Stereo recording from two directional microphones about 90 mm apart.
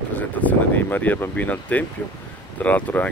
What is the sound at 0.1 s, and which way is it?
Speech, 20° left (ahead or behind).